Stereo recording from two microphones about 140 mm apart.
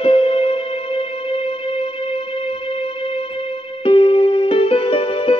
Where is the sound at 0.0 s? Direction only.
45° left (ahead or behind).